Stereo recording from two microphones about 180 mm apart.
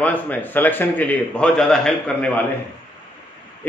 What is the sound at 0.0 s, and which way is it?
A man's voice, 10° left (ahead or behind).